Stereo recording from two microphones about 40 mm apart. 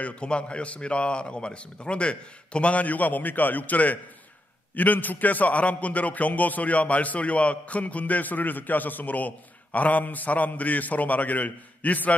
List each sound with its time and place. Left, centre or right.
0.0 s a man's voice: left